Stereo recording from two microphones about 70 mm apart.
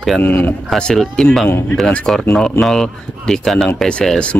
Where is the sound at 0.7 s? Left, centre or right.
Centre.